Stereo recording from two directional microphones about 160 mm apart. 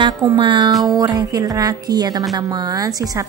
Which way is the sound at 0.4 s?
30° right (ahead or behind).